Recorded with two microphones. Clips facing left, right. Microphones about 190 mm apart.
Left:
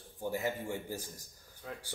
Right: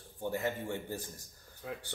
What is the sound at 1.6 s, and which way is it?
Speech, 5° right (ahead or behind).